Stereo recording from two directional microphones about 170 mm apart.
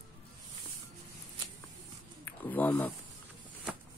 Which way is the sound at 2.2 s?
10° left (ahead or behind).